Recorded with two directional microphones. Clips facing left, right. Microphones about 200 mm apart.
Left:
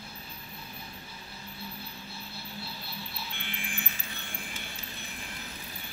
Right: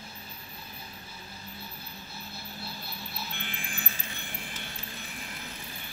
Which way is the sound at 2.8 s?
45° right (ahead or behind).